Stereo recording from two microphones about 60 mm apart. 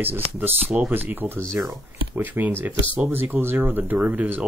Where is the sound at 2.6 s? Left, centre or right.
Right.